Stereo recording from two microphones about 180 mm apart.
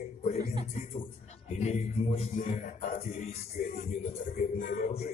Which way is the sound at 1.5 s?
40° left (ahead or behind).